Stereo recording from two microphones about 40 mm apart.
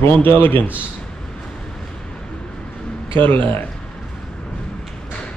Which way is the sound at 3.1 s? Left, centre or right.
Left.